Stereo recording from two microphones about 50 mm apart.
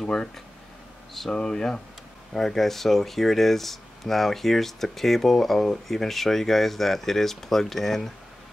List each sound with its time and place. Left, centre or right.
0.0 s speech: centre
1.3 s speech: centre